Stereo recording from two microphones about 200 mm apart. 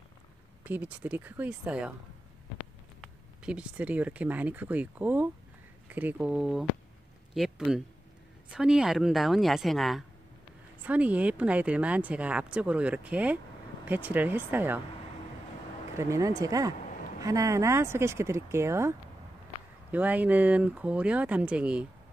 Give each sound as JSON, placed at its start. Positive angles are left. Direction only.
{"t": 0.7, "sound": "speech", "side_deg": -10}
{"t": 3.0, "sound": "a woman's voice", "side_deg": -5}
{"t": 16.0, "sound": "speech", "side_deg": -15}